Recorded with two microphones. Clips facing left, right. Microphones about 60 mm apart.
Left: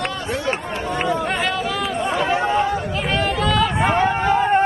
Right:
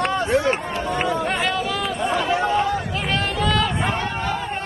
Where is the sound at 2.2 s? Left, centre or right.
Left.